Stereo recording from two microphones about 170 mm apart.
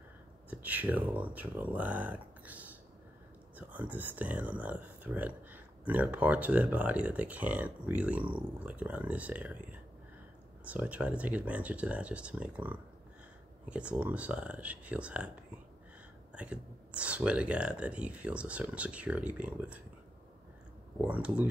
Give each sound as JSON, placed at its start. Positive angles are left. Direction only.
{"t": 0.5, "sound": "speech", "side_deg": -10}
{"t": 16.3, "sound": "speech", "side_deg": -5}
{"t": 21.0, "sound": "speech", "side_deg": -10}